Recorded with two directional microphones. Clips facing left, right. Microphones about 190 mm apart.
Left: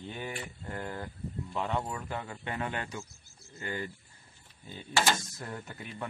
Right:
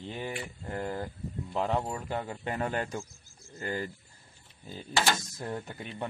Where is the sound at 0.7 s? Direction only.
35° right (ahead or behind).